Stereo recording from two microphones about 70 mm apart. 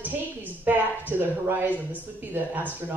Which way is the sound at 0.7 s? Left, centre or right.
Right.